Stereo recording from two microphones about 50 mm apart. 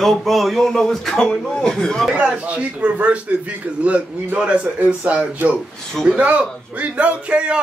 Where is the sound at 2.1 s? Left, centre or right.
Centre.